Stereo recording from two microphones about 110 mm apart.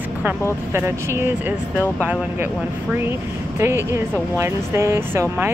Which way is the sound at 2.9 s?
20° right (ahead or behind).